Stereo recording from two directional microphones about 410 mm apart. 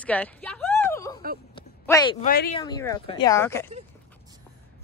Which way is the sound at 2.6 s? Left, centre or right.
Centre.